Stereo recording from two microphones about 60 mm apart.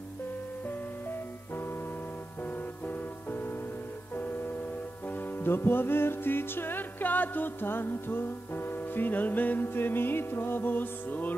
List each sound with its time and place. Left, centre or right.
5.4 s music: left